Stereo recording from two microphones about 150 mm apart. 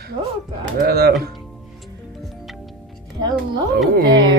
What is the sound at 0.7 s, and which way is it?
Speech, 90° right.